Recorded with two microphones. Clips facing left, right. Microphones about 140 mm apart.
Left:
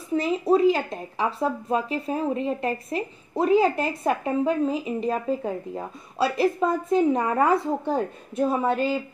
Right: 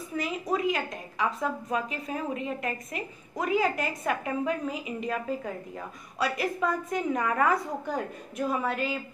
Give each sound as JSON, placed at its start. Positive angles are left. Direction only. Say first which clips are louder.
{"t": 0.1, "sound": "speech", "louder": "left 9 dB", "side_deg": 30}